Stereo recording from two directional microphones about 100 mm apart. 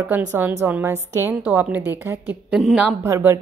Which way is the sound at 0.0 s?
20° right (ahead or behind).